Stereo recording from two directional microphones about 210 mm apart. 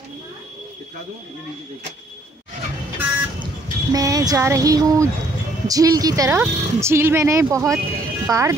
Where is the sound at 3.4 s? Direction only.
15° right (ahead or behind).